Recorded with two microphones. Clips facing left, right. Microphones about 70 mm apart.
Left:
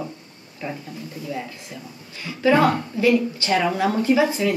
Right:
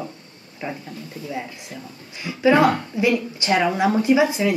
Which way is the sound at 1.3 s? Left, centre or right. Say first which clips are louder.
Even; centre.